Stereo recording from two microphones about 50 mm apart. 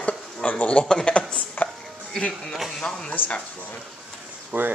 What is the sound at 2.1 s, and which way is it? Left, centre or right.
Music, centre.